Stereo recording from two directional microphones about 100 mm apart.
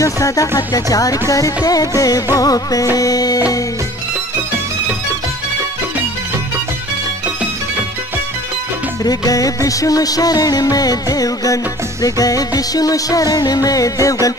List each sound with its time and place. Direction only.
0.0 s music: 35° left (ahead or behind)
9.0 s music: 40° left (ahead or behind)